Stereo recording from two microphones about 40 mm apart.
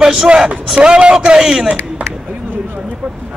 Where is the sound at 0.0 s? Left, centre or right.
Centre.